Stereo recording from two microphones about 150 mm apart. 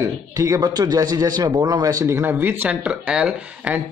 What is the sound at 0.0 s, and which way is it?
A man's voice, 20° right (ahead or behind).